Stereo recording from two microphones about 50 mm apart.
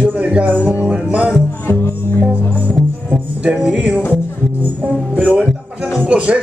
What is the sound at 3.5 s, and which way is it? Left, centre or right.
Speech, right.